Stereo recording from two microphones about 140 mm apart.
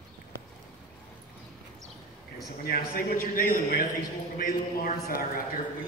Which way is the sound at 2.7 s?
90° left.